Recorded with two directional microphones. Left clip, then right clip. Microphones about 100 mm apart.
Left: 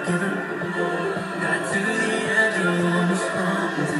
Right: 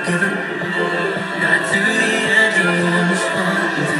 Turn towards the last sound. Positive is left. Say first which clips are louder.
# right 6 dB
turn(degrees=-20)  # may be behind; listen again after turning